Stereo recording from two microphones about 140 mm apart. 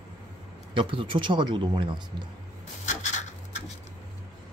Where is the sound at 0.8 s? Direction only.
35° right (ahead or behind).